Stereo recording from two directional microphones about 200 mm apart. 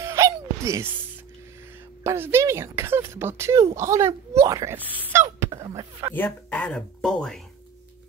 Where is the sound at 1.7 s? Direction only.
10° right (ahead or behind).